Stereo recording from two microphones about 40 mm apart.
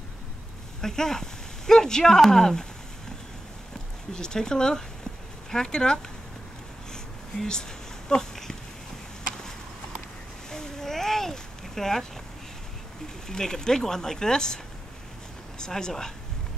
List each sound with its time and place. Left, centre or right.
0.7 s speech: centre
4.1 s speech: centre
8.1 s dog: centre
10.5 s boat: centre
13.3 s speech: centre
15.6 s speech: centre